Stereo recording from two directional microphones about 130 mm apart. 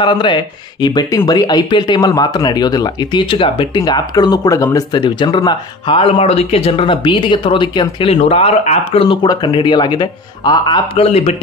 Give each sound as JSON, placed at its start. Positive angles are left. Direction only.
{"t": 0.0, "sound": "speech", "side_deg": 35}
{"t": 8.1, "sound": "speech", "side_deg": 50}
{"t": 9.0, "sound": "speech", "side_deg": 40}
{"t": 11.1, "sound": "speech", "side_deg": 55}